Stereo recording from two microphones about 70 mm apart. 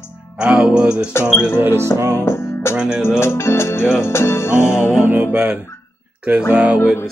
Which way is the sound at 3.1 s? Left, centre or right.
Left.